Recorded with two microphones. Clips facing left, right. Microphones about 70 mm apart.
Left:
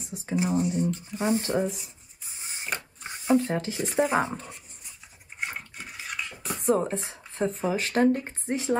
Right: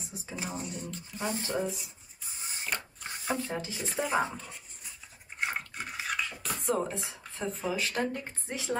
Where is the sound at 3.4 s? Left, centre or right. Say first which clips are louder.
Left 6 dB; left.